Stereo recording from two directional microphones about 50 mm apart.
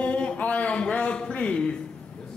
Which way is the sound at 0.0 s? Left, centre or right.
Left.